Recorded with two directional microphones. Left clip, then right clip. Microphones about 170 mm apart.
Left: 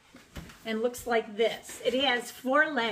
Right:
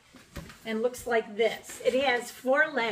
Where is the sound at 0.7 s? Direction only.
10° left (ahead or behind).